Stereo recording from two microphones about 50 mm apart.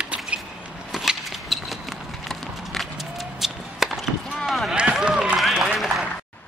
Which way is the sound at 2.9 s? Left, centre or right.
Centre.